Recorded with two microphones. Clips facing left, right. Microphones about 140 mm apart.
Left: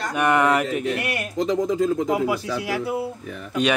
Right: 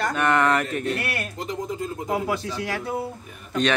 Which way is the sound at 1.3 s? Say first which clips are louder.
Left 8 dB; 90° left.